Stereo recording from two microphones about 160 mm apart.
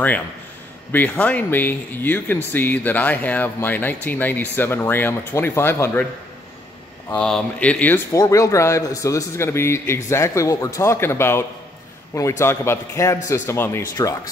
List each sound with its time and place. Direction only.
0.9 s speech: 10° left (ahead or behind)
7.2 s speech: 5° left (ahead or behind)